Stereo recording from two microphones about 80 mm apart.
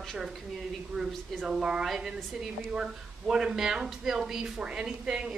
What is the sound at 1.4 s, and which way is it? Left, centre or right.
Speech, centre.